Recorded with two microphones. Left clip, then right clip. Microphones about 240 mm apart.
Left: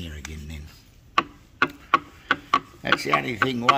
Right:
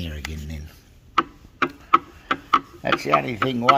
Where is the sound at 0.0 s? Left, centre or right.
Right.